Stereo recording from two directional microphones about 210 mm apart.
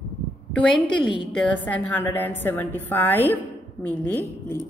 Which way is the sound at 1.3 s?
5° left (ahead or behind).